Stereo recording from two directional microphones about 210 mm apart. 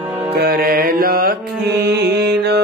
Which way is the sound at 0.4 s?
45° right (ahead or behind).